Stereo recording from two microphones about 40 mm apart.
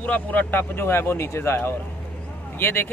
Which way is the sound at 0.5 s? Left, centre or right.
Left.